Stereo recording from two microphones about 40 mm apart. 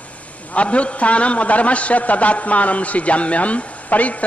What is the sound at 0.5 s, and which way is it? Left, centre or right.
A man's voice, left.